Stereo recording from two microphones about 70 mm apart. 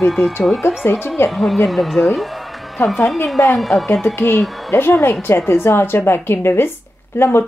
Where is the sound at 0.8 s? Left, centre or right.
Left.